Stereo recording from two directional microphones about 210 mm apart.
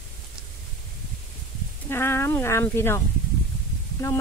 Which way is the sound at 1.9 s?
10° left (ahead or behind).